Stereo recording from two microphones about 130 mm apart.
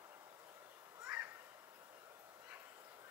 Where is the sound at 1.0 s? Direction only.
15° right (ahead or behind).